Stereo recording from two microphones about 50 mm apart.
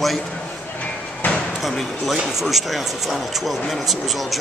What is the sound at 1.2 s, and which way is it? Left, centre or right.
Basketball bounce, left.